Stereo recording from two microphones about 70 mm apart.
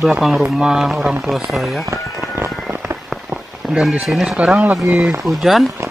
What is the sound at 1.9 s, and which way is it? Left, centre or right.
Fireworks, right.